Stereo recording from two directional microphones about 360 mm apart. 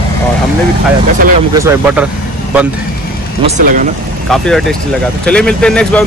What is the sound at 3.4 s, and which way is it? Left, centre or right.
Speech, right.